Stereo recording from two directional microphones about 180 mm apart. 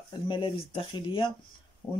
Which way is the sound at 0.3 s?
30° left (ahead or behind).